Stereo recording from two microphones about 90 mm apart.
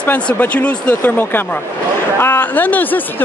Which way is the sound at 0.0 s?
20° left (ahead or behind).